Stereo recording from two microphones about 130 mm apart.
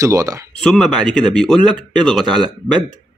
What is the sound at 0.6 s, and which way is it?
Speech, 5° left (ahead or behind).